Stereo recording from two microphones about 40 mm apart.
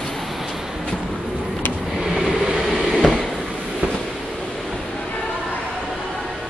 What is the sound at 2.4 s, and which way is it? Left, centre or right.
Vehicle, centre.